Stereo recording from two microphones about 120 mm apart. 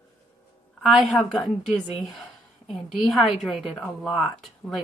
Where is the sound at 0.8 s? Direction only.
Centre (ahead or behind).